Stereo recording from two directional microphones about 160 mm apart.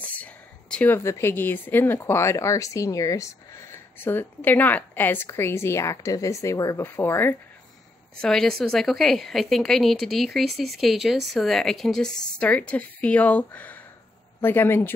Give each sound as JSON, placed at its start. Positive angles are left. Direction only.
{"t": 0.1, "sound": "speech", "side_deg": 10}
{"t": 8.2, "sound": "a woman's voice", "side_deg": 5}